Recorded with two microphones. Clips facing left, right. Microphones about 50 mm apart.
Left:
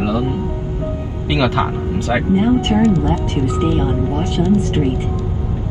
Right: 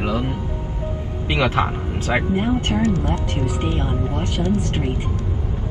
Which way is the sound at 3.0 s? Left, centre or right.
Left.